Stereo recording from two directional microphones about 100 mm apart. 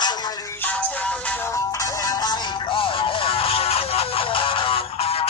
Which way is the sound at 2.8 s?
60° left (ahead or behind).